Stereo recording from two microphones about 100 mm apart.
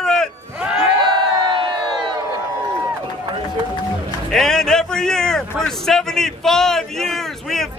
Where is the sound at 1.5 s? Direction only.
55° right (ahead or behind).